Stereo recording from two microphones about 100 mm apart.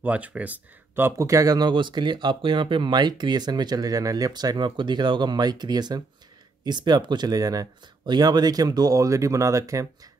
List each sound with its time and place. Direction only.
0.0 s speech: 15° right (ahead or behind)
1.1 s speech: 35° right (ahead or behind)